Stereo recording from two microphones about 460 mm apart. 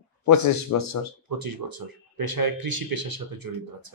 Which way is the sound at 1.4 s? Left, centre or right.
Right.